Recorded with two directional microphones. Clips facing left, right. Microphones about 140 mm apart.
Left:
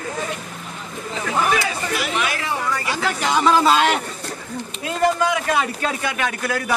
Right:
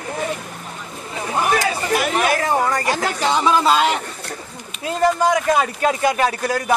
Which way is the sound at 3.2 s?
25° right (ahead or behind).